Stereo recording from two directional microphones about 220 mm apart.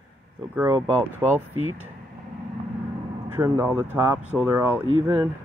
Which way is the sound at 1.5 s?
70° right (ahead or behind).